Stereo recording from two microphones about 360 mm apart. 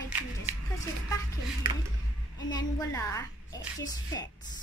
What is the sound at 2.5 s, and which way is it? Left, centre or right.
A child's voice, centre.